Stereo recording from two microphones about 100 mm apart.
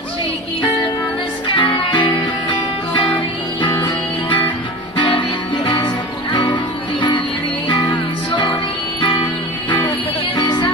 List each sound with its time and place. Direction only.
1.6 s music: 55° left (ahead or behind)
6.3 s music: 50° left (ahead or behind)